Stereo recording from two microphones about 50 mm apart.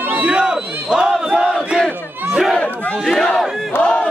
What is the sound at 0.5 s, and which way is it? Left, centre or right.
Battle cry, centre.